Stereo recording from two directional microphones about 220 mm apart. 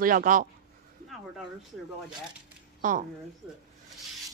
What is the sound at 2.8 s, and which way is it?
Speech, 35° right (ahead or behind).